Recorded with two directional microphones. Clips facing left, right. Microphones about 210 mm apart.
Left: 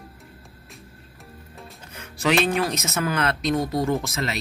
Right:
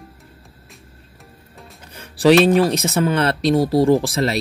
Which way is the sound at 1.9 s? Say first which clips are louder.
Right 9 dB; 35° right (ahead or behind).